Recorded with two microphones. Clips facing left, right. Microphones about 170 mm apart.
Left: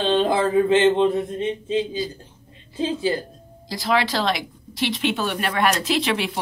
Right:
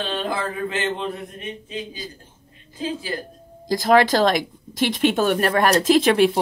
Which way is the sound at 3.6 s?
45° right (ahead or behind).